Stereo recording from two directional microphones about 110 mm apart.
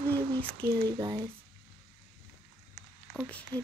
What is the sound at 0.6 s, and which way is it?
Speech, 35° right (ahead or behind).